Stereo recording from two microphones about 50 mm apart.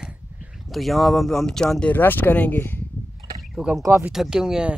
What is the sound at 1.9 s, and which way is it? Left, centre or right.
Speech, left.